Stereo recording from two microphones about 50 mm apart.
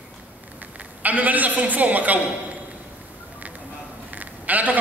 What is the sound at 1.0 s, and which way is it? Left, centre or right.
A woman's voice, right.